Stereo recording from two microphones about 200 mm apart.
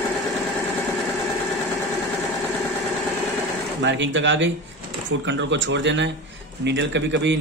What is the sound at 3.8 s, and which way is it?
A man's voice, 65° right (ahead or behind).